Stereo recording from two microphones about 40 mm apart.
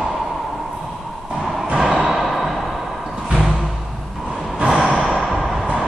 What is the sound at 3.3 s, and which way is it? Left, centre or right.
Music, centre.